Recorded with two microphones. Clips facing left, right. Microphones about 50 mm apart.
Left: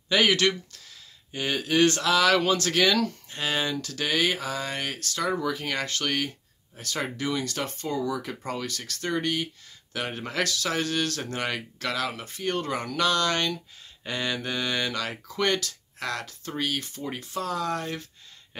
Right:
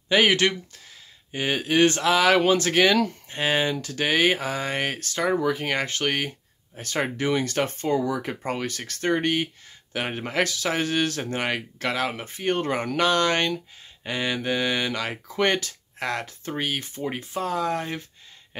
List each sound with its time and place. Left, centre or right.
0.1 s speech: right
9.9 s speech: right